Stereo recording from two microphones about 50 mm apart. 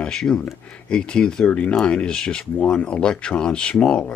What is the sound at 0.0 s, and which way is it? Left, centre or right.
Speech, centre.